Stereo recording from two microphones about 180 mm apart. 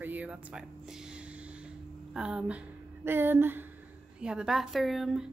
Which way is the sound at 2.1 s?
5° right (ahead or behind).